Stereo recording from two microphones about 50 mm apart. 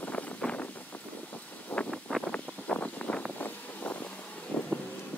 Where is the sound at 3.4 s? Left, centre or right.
Left.